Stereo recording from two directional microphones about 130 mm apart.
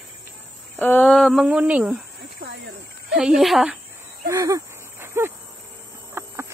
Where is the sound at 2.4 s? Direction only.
90° right.